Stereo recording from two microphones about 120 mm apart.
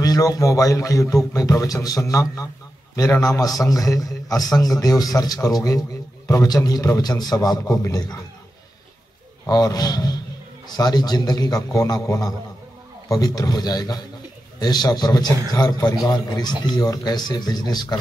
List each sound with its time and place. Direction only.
0.0 s a man's voice: 30° left (ahead or behind)
9.5 s a man's voice: 35° left (ahead or behind)